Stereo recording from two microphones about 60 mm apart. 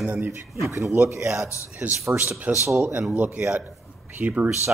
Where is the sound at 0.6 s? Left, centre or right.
Right.